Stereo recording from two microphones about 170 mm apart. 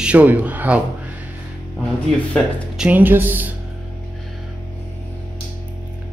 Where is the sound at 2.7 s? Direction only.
10° right (ahead or behind).